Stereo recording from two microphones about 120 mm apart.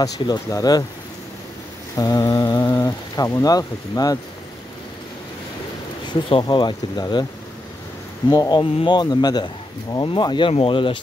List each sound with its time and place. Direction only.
0.0 s speech: 30° left (ahead or behind)
2.0 s speech: 30° left (ahead or behind)
6.4 s speech: 35° left (ahead or behind)
8.3 s speech: 35° left (ahead or behind)